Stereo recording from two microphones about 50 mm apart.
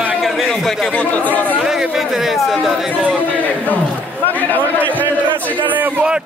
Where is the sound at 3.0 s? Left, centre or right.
Right.